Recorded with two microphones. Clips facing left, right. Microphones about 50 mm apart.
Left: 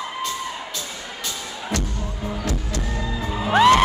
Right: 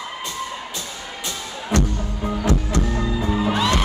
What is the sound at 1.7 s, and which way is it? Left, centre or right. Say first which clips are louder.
Music: right 6 dB; centre.